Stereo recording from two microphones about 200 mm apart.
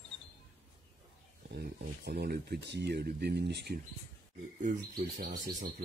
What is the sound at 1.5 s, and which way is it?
Speech, 55° right (ahead or behind).